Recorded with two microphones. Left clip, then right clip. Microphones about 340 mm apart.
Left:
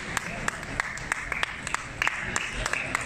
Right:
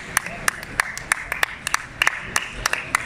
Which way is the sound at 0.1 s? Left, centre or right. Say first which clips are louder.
Right 8 dB; right.